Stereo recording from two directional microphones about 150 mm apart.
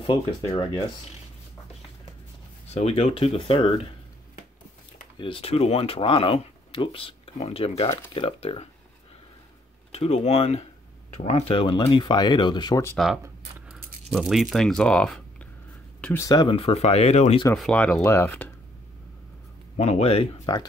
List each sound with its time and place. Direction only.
0.6 s speech: 35° left (ahead or behind)
2.7 s speech: 45° left (ahead or behind)
5.2 s speech: 40° left (ahead or behind)
9.9 s speech: 45° left (ahead or behind)
12.9 s speech: centre (ahead or behind)
16.4 s speech: 40° left (ahead or behind)
17.6 s speech: 5° left (ahead or behind)
19.8 s speech: 45° left (ahead or behind)